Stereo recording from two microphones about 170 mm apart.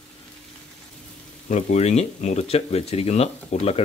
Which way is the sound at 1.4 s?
40° left (ahead or behind).